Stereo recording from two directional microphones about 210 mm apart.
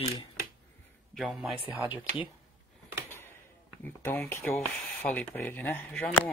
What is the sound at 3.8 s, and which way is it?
Speech, 10° left (ahead or behind).